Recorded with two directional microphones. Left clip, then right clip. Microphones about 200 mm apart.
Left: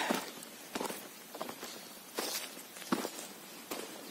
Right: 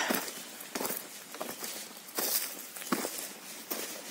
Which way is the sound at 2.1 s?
50° right (ahead or behind).